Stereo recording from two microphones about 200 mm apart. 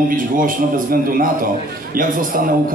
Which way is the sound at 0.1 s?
45° right (ahead or behind).